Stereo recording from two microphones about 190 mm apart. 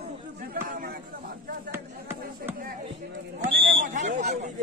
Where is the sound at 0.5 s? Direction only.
50° right (ahead or behind).